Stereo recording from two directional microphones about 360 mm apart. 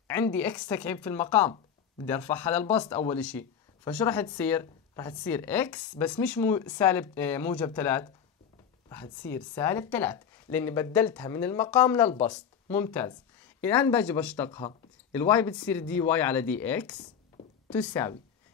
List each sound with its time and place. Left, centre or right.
0.1 s speech: centre